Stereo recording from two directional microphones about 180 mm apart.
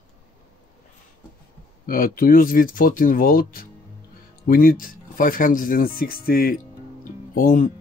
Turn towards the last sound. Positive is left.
turn(degrees=50)  # may be behind; listen again after turning